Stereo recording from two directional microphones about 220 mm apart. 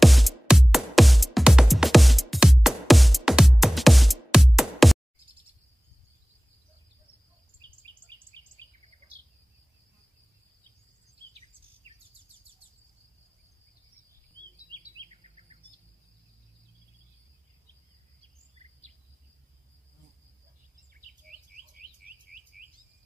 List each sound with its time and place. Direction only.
0.0 s music: centre (ahead or behind)
8.3 s a sound: 20° right (ahead or behind)
14.7 s chirp: 25° right (ahead or behind)
20.9 s bird vocalization: 40° right (ahead or behind)
22.0 s chirp: 40° right (ahead or behind)